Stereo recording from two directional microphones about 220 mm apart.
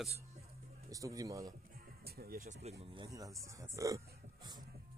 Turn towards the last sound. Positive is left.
turn(degrees=-20)  # may be behind; listen again after turning